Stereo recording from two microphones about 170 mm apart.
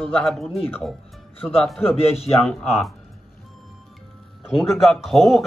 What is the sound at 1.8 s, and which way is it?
Speech, 35° left (ahead or behind).